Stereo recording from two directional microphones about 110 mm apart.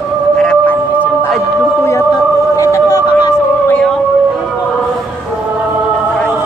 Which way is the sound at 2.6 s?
30° left (ahead or behind).